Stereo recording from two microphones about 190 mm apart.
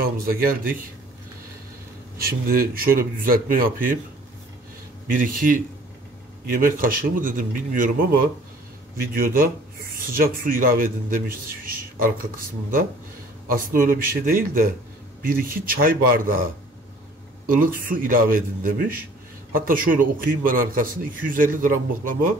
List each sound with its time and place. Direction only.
0.0 s a man's voice: 50° right (ahead or behind)
2.1 s a man's voice: 50° right (ahead or behind)
5.2 s a man's voice: 45° right (ahead or behind)
6.6 s a man's voice: 45° right (ahead or behind)
13.5 s a man's voice: 45° right (ahead or behind)
17.6 s a man's voice: 45° right (ahead or behind)